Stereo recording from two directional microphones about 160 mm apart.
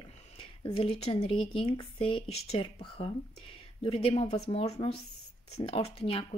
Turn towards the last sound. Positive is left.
turn(degrees=35)  # may be behind; listen again after turning